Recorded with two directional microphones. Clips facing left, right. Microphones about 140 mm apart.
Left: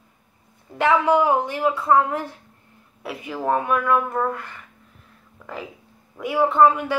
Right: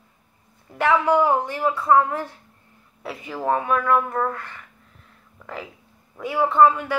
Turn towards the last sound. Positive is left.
turn(degrees=15)  # may be behind; listen again after turning